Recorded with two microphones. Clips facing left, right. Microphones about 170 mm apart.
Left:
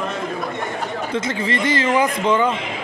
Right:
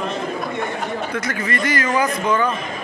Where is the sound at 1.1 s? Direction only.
25° left (ahead or behind).